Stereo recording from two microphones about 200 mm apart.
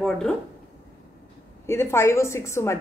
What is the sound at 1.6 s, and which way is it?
A woman's voice, 10° left (ahead or behind).